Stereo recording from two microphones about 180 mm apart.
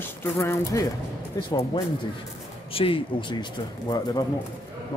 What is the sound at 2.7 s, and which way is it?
A man's voice, 30° left (ahead or behind).